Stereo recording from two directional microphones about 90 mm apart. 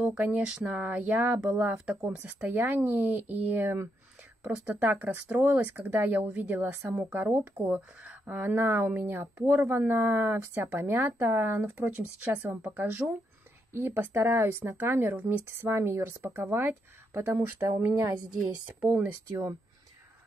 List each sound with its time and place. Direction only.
0.0 s speech: 15° right (ahead or behind)
4.4 s speech: 20° right (ahead or behind)
8.0 s speech: 15° right (ahead or behind)
18.4 s a woman's voice: 15° right (ahead or behind)